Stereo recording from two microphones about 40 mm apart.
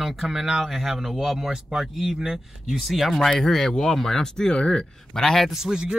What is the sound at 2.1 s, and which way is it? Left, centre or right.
Speech, centre.